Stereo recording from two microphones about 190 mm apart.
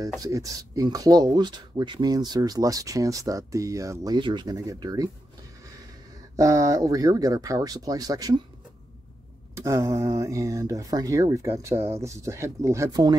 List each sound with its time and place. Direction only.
0.2 s speech: 20° right (ahead or behind)
6.3 s speech: 15° right (ahead or behind)
9.6 s speech: 15° right (ahead or behind)